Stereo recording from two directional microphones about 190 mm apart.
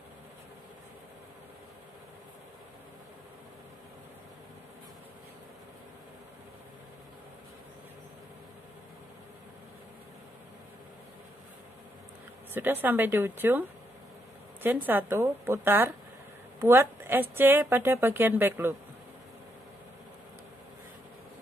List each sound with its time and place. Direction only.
12.5 s a woman's voice: 10° right (ahead or behind)